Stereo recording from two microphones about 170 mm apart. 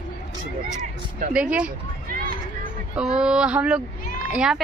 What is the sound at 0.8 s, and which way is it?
Speech, 50° right (ahead or behind).